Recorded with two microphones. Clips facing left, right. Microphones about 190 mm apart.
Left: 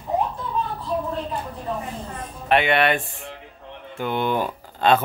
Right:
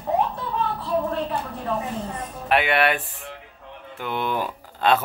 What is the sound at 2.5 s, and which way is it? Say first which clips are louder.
Speech: left 2 dB; 5° right (ahead or behind).